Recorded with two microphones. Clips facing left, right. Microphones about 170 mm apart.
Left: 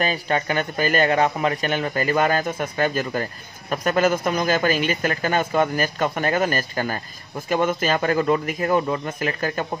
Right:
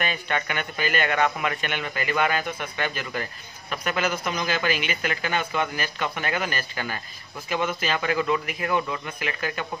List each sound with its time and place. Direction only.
0.0 s a man's voice: 35° left (ahead or behind)